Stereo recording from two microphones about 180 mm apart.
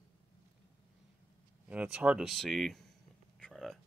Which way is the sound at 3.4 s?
Centre (ahead or behind).